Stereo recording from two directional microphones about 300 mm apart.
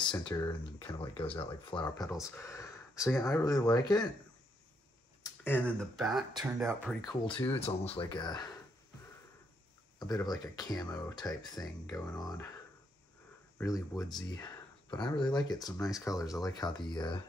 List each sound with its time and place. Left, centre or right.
0.0 s speech: centre
5.2 s speech: centre
7.1 s speech: centre
9.9 s speech: centre
13.6 s speech: centre